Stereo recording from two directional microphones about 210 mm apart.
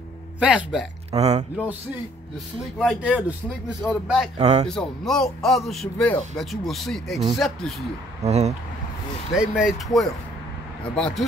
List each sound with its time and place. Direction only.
0.4 s speech: 5° right (ahead or behind)
1.1 s speech: 30° right (ahead or behind)
2.8 s speech: 5° right (ahead or behind)
4.4 s speech: 30° right (ahead or behind)
4.6 s speech: centre (ahead or behind)
8.2 s speech: 30° right (ahead or behind)
9.3 s speech: centre (ahead or behind)